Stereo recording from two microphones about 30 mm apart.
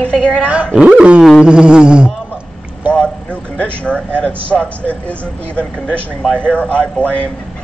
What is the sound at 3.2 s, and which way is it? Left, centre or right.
Speech, left.